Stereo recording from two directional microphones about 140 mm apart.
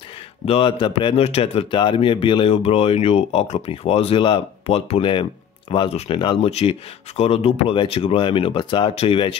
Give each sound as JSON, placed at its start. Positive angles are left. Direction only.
{"t": 0.5, "sound": "a man's voice", "side_deg": 40}